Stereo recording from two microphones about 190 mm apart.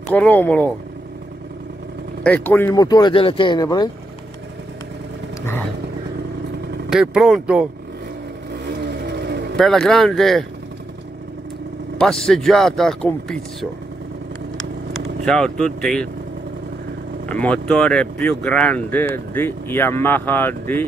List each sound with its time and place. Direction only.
0.1 s speech: 10° left (ahead or behind)
2.2 s speech: 10° left (ahead or behind)
6.9 s speech: 5° right (ahead or behind)
8.7 s vehicle: 60° right (ahead or behind)
9.6 s speech: 5° left (ahead or behind)
12.0 s speech: 5° left (ahead or behind)
14.9 s speech: 5° left (ahead or behind)
17.3 s speech: 5° left (ahead or behind)